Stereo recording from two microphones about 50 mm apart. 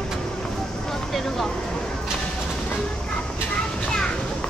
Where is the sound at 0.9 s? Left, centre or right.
Centre.